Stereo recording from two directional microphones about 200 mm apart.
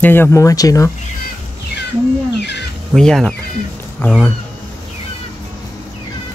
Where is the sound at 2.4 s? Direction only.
55° left (ahead or behind).